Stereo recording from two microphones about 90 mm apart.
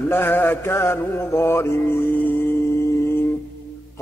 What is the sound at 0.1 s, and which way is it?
Mantra, 25° left (ahead or behind).